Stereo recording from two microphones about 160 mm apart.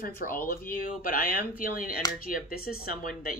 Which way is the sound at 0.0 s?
60° left (ahead or behind).